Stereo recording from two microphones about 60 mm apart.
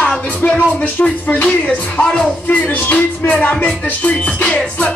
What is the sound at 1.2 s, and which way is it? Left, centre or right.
Music, left.